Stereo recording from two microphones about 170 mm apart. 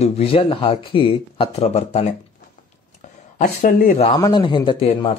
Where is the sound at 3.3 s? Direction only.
50° left (ahead or behind).